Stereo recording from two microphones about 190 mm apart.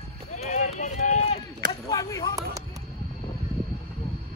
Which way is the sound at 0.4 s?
40° left (ahead or behind).